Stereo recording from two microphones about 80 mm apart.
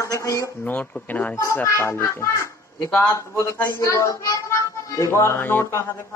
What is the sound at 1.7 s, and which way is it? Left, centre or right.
A child's voice, left.